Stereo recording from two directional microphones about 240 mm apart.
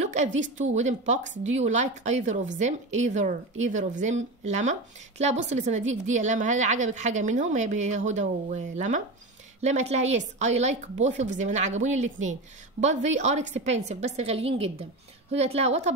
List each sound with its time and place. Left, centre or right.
0.4 s a woman's voice: right